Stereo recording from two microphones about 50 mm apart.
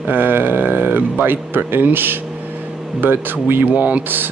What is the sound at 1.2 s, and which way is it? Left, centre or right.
Speech, right.